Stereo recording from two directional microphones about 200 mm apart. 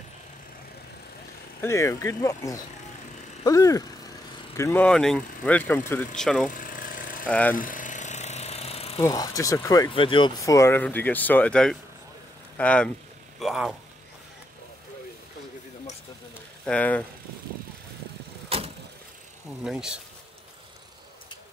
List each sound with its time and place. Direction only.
1.6 s speech: 15° left (ahead or behind)
6.5 s a sound: 45° left (ahead or behind)
7.2 s speech: 5° left (ahead or behind)
7.5 s jackhammer: 40° left (ahead or behind)
9.0 s speech: 15° left (ahead or behind); by 13.7 s centre (ahead or behind)
16.6 s speech: 5° left (ahead or behind)
18.5 s vehicle: 30° right (ahead or behind)
19.6 s speech: 5° right (ahead or behind)